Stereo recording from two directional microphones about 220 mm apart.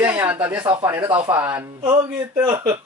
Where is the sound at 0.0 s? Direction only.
10° right (ahead or behind).